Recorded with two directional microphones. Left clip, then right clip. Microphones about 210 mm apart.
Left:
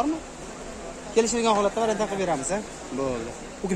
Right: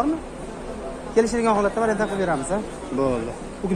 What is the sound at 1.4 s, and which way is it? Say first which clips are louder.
Speech: right 2 dB; 10° left (ahead or behind).